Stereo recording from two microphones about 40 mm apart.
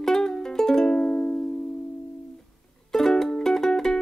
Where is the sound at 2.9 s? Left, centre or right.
Centre.